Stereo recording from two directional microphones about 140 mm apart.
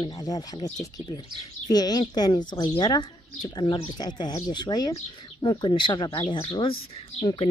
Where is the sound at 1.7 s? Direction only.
30° left (ahead or behind).